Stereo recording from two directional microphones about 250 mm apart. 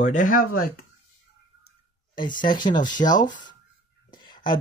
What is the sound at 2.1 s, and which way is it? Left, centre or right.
Speech, centre.